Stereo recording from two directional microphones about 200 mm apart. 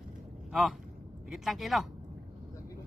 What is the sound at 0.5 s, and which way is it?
Speech, centre (ahead or behind).